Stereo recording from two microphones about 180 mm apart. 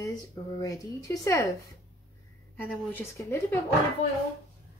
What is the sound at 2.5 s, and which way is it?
Speech, 10° left (ahead or behind).